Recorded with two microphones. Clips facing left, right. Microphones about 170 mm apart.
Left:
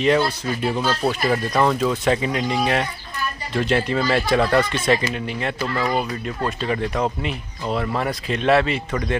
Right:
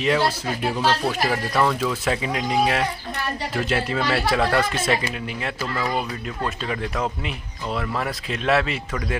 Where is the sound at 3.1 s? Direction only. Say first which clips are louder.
Right 2 dB; 80° right.